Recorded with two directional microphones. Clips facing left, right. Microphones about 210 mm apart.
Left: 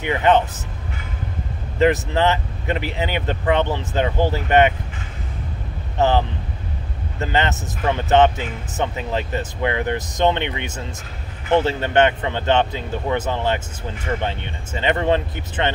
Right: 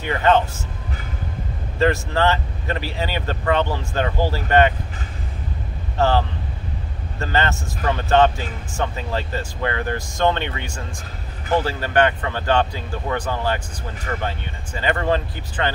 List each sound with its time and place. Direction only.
0.0 s speech: 15° left (ahead or behind)
1.8 s speech: 20° left (ahead or behind)
5.9 s speech: 20° left (ahead or behind)